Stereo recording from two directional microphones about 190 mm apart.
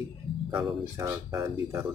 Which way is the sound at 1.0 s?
15° right (ahead or behind).